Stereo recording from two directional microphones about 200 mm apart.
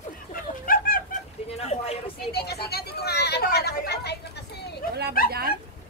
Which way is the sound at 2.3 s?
55° left (ahead or behind).